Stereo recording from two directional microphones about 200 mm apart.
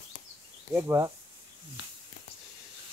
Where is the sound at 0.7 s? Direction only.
10° right (ahead or behind).